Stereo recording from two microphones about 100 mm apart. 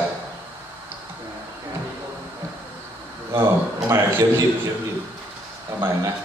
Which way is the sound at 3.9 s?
25° right (ahead or behind).